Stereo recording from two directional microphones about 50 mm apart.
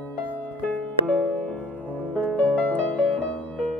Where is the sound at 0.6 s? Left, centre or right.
Centre.